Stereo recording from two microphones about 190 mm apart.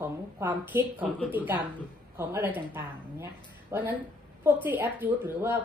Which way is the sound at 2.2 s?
10° right (ahead or behind).